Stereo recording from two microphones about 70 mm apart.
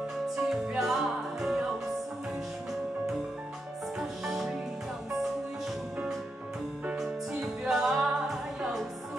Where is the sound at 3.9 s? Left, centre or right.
Centre.